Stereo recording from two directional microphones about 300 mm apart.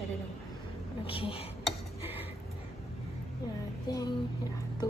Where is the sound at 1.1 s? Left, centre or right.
Centre.